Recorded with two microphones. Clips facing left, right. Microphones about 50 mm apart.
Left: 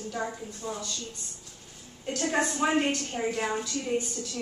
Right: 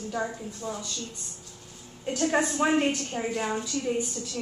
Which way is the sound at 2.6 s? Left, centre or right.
Centre.